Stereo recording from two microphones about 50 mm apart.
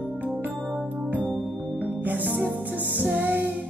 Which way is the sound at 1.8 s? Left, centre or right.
Right.